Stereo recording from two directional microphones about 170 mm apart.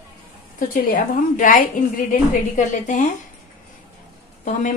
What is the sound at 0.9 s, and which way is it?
Speech, 50° left (ahead or behind).